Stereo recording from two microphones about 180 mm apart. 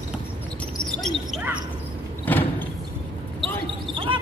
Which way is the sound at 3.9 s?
30° right (ahead or behind).